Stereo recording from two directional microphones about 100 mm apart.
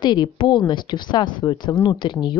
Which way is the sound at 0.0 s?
50° left (ahead or behind).